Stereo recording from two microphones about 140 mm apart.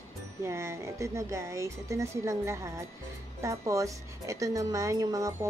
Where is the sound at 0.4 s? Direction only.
20° right (ahead or behind).